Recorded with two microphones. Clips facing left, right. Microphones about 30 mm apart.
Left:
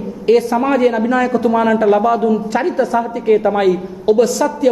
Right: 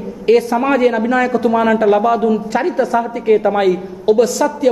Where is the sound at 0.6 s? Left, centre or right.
Centre.